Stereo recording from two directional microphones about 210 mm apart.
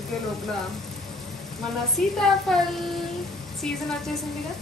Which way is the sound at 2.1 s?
Centre (ahead or behind).